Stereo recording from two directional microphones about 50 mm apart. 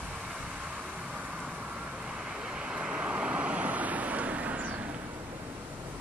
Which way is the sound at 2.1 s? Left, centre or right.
Centre.